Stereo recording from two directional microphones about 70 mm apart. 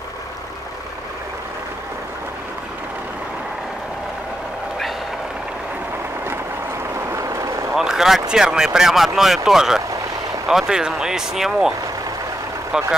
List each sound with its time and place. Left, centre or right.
7.1 s vehicle: right
7.7 s speech: centre
12.7 s speech: centre